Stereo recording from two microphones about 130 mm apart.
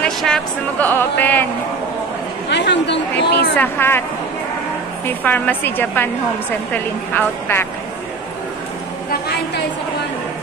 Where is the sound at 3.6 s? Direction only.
15° left (ahead or behind).